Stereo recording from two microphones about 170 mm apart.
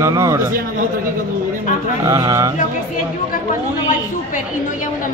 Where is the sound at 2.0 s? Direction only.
20° right (ahead or behind).